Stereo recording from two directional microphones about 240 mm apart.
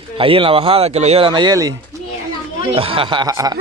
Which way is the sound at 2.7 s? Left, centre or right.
Right.